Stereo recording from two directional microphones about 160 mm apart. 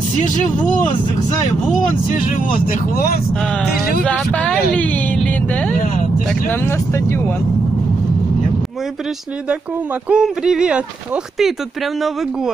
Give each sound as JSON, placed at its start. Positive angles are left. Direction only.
{"t": 2.1, "sound": "speech", "side_deg": 60}
{"t": 4.0, "sound": "speech", "side_deg": 10}
{"t": 10.0, "sound": "speech", "side_deg": -5}